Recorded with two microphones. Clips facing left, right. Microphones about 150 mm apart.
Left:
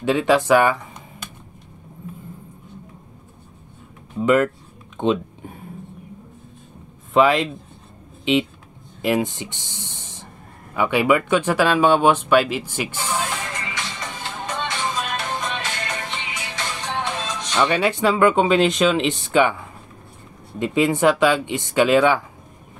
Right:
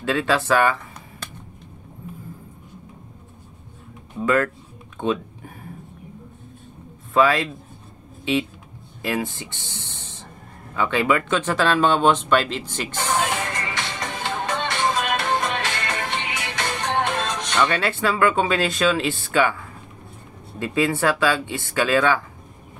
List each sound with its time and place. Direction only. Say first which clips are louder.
0.0 s speech: left 4 dB; 15° left (ahead or behind)
4.2 s speech: left 3 dB; 20° left (ahead or behind)
4.9 s a sound: left 3 dB; 20° left (ahead or behind)
7.2 s speech: left 2 dB; 20° left (ahead or behind)
9.0 s speech: left 5 dB; 20° left (ahead or behind)
12.9 s music: right 5 dB; 60° right (ahead or behind)
17.6 s speech: left 3 dB; 10° left (ahead or behind)
20.5 s speech: left 3 dB; 20° left (ahead or behind)